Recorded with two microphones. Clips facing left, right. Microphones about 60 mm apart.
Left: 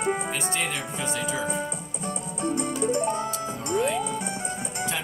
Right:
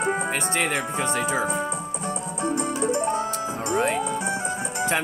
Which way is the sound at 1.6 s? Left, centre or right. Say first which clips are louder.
Right 4 dB; right.